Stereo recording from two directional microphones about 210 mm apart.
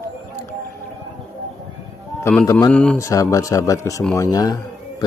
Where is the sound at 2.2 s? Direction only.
10° left (ahead or behind).